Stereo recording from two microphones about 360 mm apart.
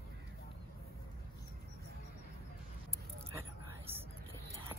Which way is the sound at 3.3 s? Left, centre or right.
Centre.